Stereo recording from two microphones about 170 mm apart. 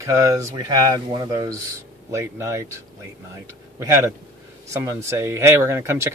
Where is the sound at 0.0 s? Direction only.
20° right (ahead or behind).